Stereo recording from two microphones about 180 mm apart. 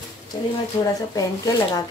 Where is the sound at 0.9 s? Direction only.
20° left (ahead or behind).